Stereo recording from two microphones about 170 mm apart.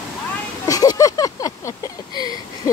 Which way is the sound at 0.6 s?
20° left (ahead or behind).